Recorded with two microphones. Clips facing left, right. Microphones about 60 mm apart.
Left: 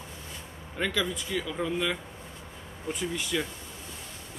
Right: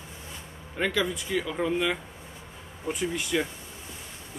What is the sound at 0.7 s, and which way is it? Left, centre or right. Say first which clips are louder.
Speech: right 2 dB; centre.